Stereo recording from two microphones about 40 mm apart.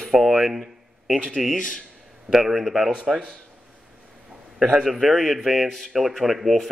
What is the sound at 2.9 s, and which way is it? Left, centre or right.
Speech, right.